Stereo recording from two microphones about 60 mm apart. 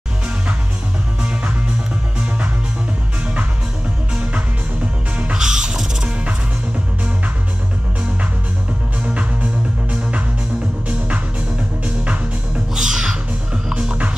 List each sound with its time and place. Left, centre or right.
5.2 s music: centre
9.0 s music: right
11.8 s music: right
12.7 s music: centre
13.7 s music: centre